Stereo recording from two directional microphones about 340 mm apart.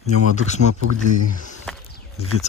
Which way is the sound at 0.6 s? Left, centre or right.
Right.